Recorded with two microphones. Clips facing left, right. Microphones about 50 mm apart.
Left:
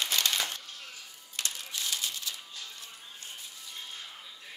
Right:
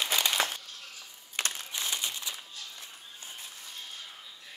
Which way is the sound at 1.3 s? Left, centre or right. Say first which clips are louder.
Right 4 dB; right.